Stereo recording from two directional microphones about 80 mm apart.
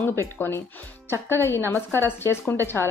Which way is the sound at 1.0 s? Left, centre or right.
Left.